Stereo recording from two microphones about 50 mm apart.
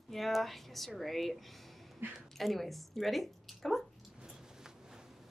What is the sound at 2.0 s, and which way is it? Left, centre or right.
Speech, right.